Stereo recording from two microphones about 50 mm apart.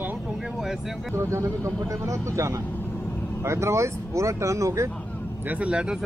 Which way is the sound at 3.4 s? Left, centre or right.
Right.